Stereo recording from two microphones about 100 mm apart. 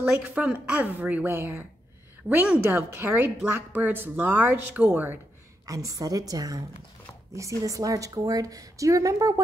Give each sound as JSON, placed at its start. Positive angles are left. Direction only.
{"t": 0.0, "sound": "a woman's voice", "side_deg": -15}
{"t": 2.2, "sound": "a woman's voice", "side_deg": -10}
{"t": 3.0, "sound": "speech", "side_deg": -25}
{"t": 5.9, "sound": "a woman's voice", "side_deg": -35}